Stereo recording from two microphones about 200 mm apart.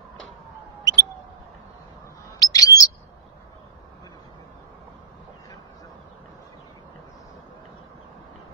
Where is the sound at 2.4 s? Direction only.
20° left (ahead or behind).